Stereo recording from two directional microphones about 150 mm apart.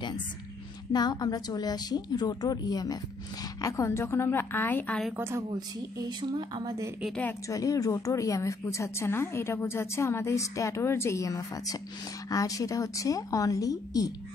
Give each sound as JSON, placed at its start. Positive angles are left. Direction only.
{"t": 0.9, "sound": "a woman's voice", "side_deg": 25}
{"t": 5.1, "sound": "a woman's voice", "side_deg": -15}
{"t": 5.5, "sound": "speech", "side_deg": -25}
{"t": 7.2, "sound": "a woman's voice", "side_deg": 15}